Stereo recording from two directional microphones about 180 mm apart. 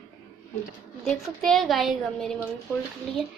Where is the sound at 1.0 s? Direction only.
Centre (ahead or behind).